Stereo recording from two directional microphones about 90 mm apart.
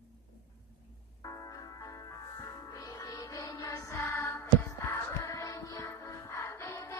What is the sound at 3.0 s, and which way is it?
Music, 45° left (ahead or behind).